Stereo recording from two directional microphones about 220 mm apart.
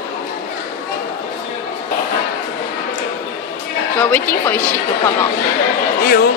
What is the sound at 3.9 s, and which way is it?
A woman's voice, 10° left (ahead or behind).